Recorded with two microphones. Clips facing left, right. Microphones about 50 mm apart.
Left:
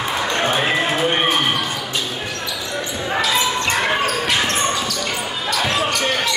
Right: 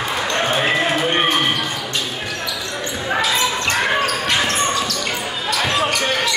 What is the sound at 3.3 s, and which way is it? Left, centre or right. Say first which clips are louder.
Basketball bounce: even; centre.